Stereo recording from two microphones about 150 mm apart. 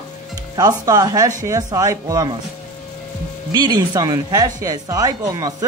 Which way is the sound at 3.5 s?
30° right (ahead or behind).